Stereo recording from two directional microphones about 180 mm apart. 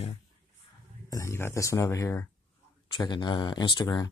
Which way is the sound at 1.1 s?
15° left (ahead or behind).